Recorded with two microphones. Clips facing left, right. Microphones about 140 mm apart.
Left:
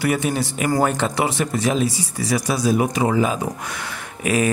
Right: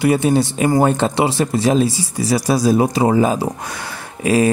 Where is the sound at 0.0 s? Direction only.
30° right (ahead or behind).